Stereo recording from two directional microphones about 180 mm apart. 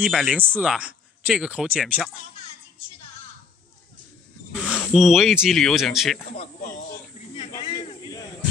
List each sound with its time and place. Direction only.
0.0 s speech: 5° right (ahead or behind)
4.5 s speech: centre (ahead or behind)
6.3 s speech: 35° left (ahead or behind)